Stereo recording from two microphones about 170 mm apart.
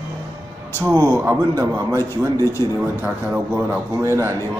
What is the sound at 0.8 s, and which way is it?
A man's voice, 15° right (ahead or behind).